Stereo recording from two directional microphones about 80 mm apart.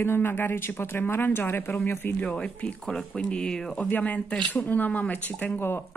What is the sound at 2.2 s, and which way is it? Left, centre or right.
Speech, centre.